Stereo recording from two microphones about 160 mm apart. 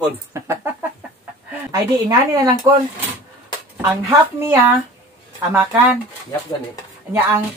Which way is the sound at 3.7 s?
20° right (ahead or behind).